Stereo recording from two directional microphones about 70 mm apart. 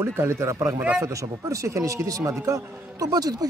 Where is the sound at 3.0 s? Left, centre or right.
Right.